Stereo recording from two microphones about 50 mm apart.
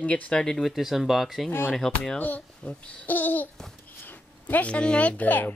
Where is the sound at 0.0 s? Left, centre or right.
Left.